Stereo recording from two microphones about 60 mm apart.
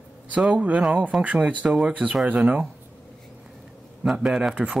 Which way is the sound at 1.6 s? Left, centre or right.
Centre.